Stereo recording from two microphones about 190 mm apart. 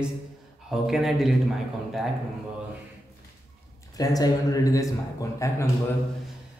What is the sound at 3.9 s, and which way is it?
A man's voice, 20° left (ahead or behind).